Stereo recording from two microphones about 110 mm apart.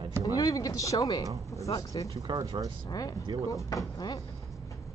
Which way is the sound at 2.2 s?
45° right (ahead or behind).